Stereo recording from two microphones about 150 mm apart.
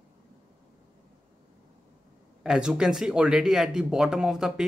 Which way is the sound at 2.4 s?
5° right (ahead or behind).